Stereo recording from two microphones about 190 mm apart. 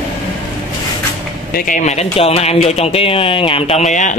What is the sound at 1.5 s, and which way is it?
Speech, 45° left (ahead or behind).